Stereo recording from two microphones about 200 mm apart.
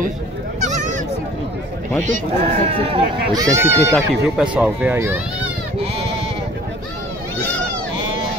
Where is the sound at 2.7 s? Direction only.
25° right (ahead or behind).